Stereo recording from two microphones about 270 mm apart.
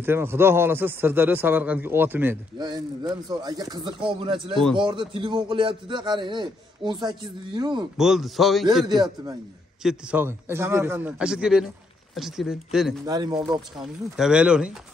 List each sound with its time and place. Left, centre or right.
0.0 s a man's voice: centre
8.0 s speech: centre
9.0 s a man's voice: centre
13.0 s a man's voice: centre
13.7 s speech: centre